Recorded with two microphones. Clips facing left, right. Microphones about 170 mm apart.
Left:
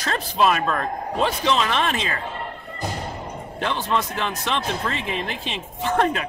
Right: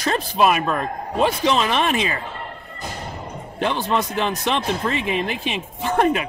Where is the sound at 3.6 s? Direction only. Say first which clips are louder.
Right 3 dB; 15° right (ahead or behind).